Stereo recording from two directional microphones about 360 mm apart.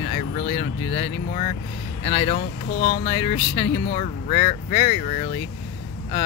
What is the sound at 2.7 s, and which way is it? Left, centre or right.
Speech, left.